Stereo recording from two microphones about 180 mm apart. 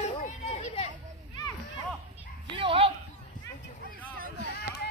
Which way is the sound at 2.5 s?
30° right (ahead or behind).